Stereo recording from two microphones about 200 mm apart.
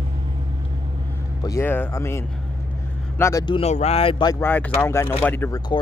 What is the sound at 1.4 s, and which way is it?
Speech, 15° left (ahead or behind).